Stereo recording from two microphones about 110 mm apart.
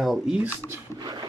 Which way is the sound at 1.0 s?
40° right (ahead or behind).